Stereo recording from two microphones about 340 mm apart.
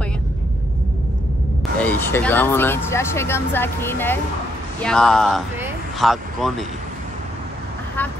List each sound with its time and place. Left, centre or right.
1.8 s speech: centre